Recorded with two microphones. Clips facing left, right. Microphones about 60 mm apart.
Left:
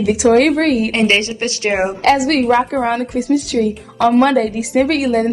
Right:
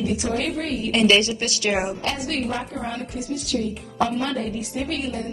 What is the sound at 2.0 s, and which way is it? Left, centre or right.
A woman's voice, left.